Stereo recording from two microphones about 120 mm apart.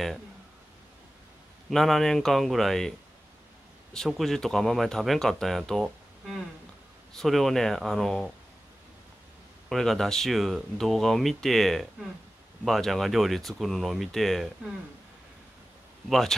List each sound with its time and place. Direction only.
1.7 s speech: centre (ahead or behind)
3.9 s speech: 5° left (ahead or behind)
9.7 s speech: 5° left (ahead or behind)
16.1 s speech: 5° left (ahead or behind)